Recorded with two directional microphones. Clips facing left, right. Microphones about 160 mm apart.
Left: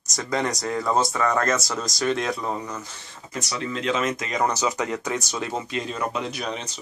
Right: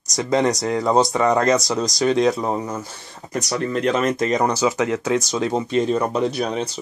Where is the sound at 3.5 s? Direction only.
50° right (ahead or behind).